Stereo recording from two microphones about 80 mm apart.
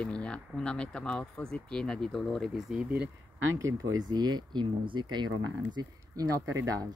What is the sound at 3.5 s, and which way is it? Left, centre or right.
Speech, right.